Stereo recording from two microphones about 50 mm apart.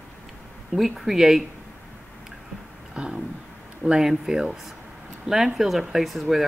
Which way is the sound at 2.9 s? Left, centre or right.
Centre.